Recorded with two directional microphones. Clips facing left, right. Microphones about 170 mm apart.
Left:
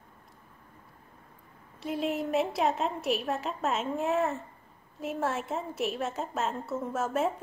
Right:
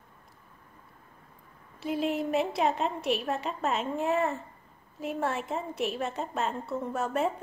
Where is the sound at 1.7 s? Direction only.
Centre (ahead or behind).